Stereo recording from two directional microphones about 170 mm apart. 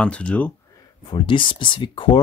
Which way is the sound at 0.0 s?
5° left (ahead or behind).